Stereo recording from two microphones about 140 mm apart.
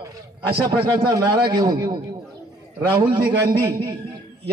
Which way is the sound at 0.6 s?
30° right (ahead or behind).